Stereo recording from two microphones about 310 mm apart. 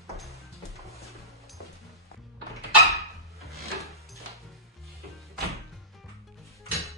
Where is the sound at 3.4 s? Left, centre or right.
Centre.